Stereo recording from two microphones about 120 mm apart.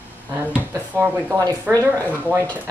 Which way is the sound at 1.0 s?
25° right (ahead or behind).